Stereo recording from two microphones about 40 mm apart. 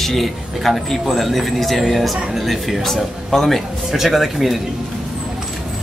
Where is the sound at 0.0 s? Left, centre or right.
Centre.